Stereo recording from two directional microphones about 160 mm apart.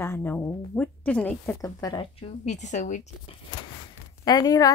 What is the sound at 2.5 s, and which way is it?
Speech, 50° left (ahead or behind).